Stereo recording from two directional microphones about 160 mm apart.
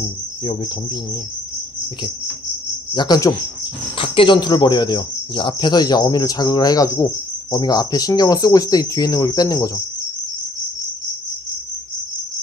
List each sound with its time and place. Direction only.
2.9 s speech: 25° left (ahead or behind)
4.0 s speech: 35° left (ahead or behind)